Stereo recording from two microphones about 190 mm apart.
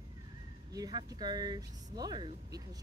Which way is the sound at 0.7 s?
20° right (ahead or behind).